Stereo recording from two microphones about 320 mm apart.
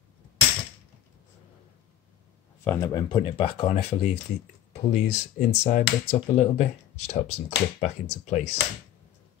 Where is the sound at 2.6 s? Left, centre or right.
Centre.